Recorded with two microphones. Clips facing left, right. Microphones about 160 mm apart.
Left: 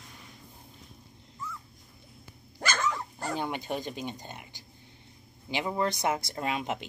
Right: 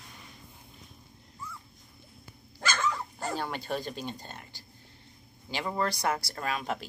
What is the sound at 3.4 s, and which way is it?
Speech, 15° left (ahead or behind).